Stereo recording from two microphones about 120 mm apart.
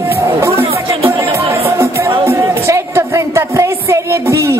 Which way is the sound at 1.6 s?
20° right (ahead or behind).